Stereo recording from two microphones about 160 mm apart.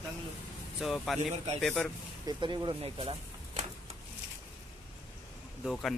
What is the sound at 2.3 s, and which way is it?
Speech, 30° right (ahead or behind).